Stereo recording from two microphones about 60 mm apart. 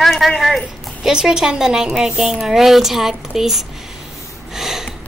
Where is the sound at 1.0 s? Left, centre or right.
Centre.